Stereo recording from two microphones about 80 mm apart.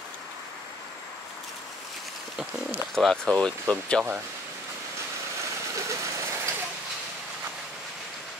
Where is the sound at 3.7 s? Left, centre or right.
Centre.